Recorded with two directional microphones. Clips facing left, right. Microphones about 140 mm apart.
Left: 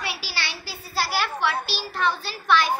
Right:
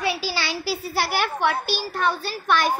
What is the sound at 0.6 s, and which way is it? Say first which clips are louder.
A child's voice: right 2 dB; 75° right (ahead or behind).